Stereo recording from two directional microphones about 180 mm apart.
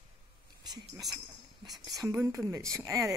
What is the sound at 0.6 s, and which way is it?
Speech, 20° right (ahead or behind).